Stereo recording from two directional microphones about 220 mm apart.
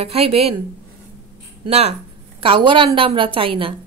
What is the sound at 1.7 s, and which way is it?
Speech, 30° right (ahead or behind).